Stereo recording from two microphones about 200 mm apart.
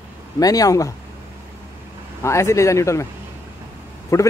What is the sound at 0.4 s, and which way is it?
Speech, 20° left (ahead or behind).